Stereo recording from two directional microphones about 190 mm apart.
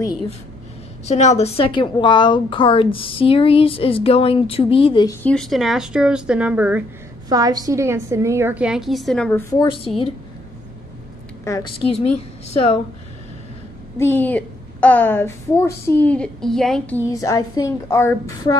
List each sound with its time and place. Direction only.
1.0 s a woman's voice: 35° left (ahead or behind)
5.2 s speech: 5° left (ahead or behind)
7.2 s a woman's voice: 20° right (ahead or behind); by 9.6 s 10° left (ahead or behind)
9.9 s a woman's voice: 30° left (ahead or behind)
11.4 s a woman's voice: 15° left (ahead or behind)
11.9 s a woman's voice: 35° left (ahead or behind)
13.9 s a woman's voice: 10° left (ahead or behind)
17.1 s a woman's voice: 15° left (ahead or behind)